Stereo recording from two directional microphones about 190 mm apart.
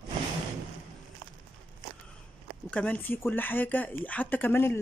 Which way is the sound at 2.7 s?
10° left (ahead or behind).